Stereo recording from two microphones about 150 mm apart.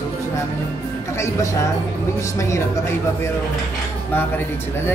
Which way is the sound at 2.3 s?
20° left (ahead or behind).